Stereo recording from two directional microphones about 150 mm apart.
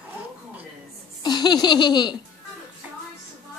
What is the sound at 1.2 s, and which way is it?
Laughter, 30° left (ahead or behind).